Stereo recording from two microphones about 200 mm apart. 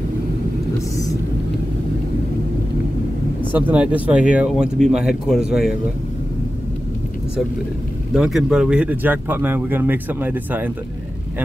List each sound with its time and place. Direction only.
3.5 s speech: 5° right (ahead or behind)
8.1 s speech: centre (ahead or behind)